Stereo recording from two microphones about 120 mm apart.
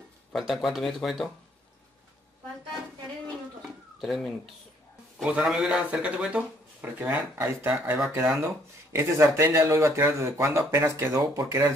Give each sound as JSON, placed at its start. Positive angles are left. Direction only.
{"t": 0.3, "sound": "speech", "side_deg": 0}
{"t": 4.0, "sound": "speech", "side_deg": 0}